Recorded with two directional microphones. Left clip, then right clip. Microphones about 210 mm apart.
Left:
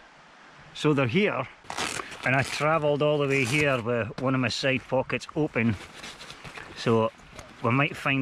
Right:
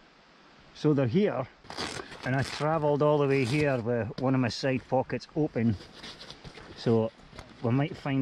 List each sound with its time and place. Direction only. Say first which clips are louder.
0.8 s speech: left 2 dB; 5° left (ahead or behind)
6.1 s a sound: left 4 dB; 25° left (ahead or behind)
6.8 s speech: left 3 dB; centre (ahead or behind)